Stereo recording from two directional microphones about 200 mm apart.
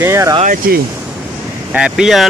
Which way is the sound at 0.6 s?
45° right (ahead or behind).